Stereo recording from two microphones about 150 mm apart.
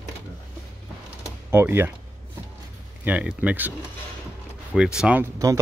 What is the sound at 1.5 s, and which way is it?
Speech, 15° right (ahead or behind).